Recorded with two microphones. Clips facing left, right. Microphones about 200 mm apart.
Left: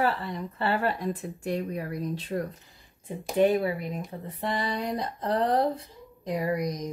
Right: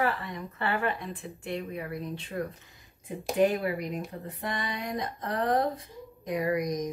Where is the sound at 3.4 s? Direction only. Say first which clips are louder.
Left 3 dB; 25° left (ahead or behind).